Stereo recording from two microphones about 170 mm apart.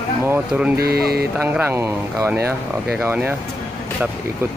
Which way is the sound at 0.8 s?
65° right (ahead or behind).